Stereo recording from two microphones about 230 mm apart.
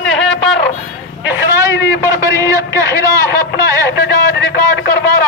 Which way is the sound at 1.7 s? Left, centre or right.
Left.